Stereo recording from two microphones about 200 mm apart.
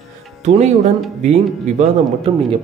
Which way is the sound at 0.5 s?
35° right (ahead or behind).